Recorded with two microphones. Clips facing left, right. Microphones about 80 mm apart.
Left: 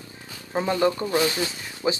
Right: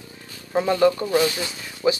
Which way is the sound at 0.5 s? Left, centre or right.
Left.